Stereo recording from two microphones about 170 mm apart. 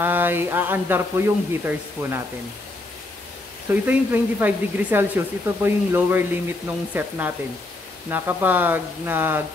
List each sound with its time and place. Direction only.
0.0 s speech: 10° right (ahead or behind)
3.8 s speech: 10° right (ahead or behind)